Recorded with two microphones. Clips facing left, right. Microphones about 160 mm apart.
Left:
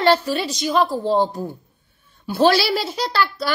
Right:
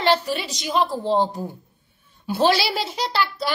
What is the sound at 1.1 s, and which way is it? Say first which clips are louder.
A woman's voice: left 2 dB; 15° right (ahead or behind).